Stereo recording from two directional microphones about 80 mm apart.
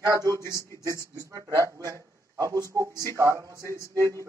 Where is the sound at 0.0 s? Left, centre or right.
Right.